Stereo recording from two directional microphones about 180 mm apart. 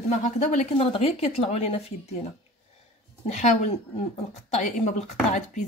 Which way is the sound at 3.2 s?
40° left (ahead or behind).